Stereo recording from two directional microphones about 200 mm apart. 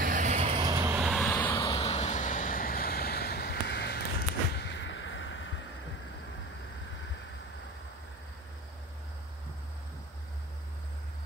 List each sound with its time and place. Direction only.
0.0 s vehicle: 40° right (ahead or behind)
0.7 s vehicle: 10° right (ahead or behind)
1.0 s vehicle: 5° left (ahead or behind)
1.8 s vehicle: 30° left (ahead or behind); by 5.6 s 70° left (ahead or behind)